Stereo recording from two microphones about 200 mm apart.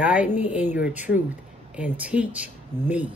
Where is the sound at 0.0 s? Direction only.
5° right (ahead or behind).